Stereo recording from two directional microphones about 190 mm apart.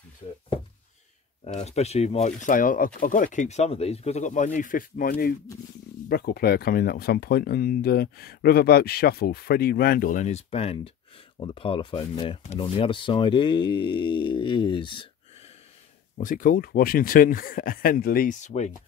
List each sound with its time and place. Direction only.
1.4 s speech: 35° left (ahead or behind)
16.2 s speech: 45° left (ahead or behind)